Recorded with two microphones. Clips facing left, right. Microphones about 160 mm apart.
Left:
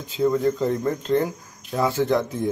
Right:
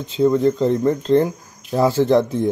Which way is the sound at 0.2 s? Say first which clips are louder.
Right 5 dB; 25° right (ahead or behind).